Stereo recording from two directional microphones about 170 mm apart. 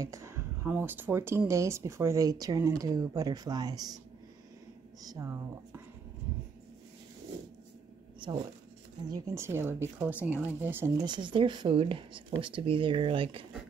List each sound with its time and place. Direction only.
0.0 s speech: 15° right (ahead or behind)
5.0 s speech: 20° right (ahead or behind)
9.0 s speech: 20° right (ahead or behind)
11.1 s speech: 30° right (ahead or behind)